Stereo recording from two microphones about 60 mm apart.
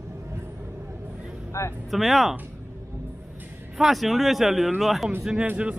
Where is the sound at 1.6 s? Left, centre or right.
Left.